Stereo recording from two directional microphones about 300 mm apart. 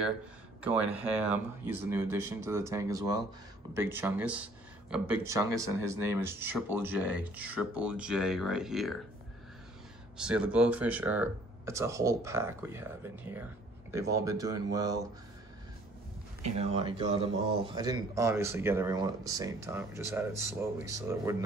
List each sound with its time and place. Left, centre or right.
0.6 s speech: centre
10.1 s speech: centre
16.4 s speech: centre